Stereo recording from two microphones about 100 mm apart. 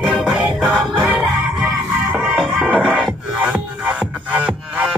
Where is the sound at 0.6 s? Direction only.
10° left (ahead or behind).